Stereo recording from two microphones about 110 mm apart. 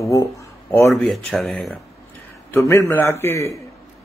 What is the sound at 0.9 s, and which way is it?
Speech, centre (ahead or behind).